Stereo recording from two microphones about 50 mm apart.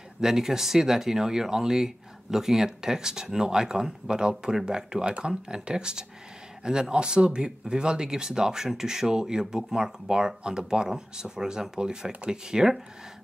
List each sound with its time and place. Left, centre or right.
0.2 s speech: centre